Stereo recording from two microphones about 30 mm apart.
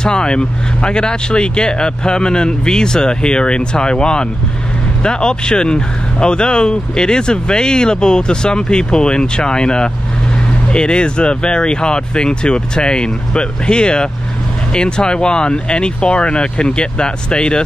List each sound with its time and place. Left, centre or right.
0.0 s speech: left